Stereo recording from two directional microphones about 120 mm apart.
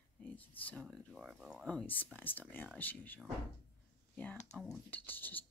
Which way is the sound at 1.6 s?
10° left (ahead or behind).